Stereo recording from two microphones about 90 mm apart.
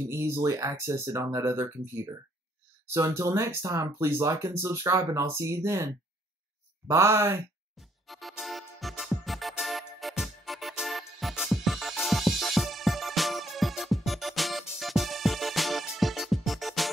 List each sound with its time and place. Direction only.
0.1 s speech: 30° right (ahead or behind)
6.9 s speech: 30° right (ahead or behind)
7.7 s music: centre (ahead or behind)